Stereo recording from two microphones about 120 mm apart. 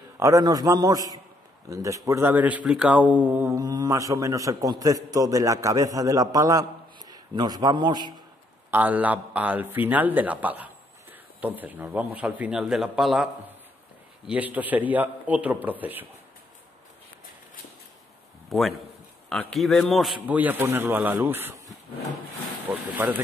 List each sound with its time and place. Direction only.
0.2 s a man's voice: 30° right (ahead or behind)
3.5 s a man's voice: 30° right (ahead or behind)
8.6 s speech: 15° right (ahead or behind)
18.5 s a man's voice: centre (ahead or behind)
20.2 s speech: 15° right (ahead or behind)
22.7 s speech: 10° right (ahead or behind)